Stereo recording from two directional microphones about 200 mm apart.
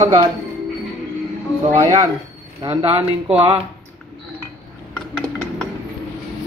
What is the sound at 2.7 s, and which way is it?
Speech, 30° right (ahead or behind).